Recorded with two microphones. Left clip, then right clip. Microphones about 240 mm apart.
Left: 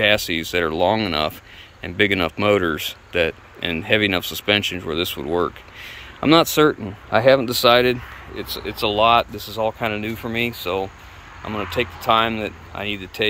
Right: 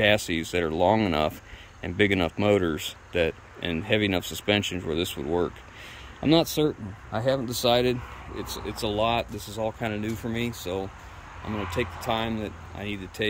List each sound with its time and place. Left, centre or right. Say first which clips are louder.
0.0 s speech: left 5 dB; centre
6.7 s speech: left 12 dB; left
7.4 s speech: left 8 dB; centre